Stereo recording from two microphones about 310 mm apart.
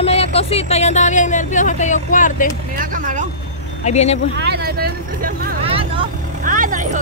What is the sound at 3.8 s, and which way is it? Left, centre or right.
Speech, left.